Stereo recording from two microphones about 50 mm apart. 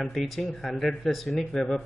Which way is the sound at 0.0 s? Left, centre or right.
Centre.